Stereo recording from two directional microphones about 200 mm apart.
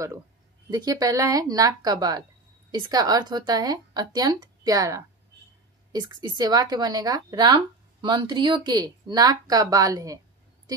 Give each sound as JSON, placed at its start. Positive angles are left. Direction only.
{"t": 0.7, "sound": "a woman's voice", "side_deg": -20}